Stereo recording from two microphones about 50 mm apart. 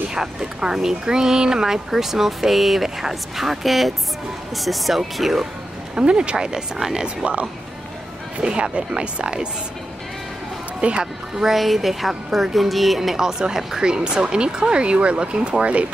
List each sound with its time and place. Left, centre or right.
0.1 s a woman's voice: centre
5.9 s speech: centre
8.4 s speech: right
10.8 s a man's voice: right
11.3 s a woman's voice: centre; by 15.9 s right